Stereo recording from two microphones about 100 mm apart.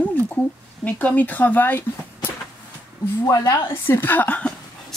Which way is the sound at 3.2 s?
35° left (ahead or behind).